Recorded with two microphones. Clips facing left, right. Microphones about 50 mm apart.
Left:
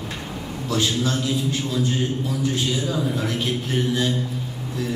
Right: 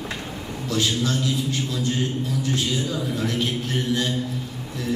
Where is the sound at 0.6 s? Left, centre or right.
Centre.